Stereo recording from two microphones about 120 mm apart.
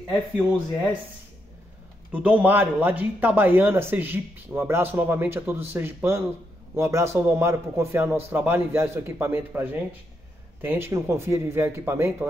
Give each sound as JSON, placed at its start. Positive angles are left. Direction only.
{"t": 2.1, "sound": "a man's voice", "side_deg": -15}